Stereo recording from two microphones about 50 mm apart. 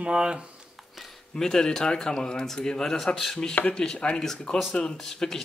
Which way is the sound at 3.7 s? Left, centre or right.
Centre.